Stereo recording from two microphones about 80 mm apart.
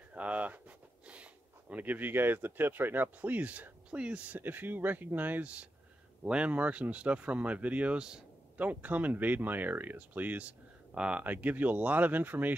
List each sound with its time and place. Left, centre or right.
0.1 s speech: centre